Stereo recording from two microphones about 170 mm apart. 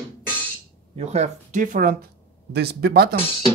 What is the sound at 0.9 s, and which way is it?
Speech, 40° right (ahead or behind).